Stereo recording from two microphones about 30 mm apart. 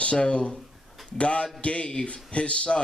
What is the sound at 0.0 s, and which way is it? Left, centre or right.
A man's voice, left.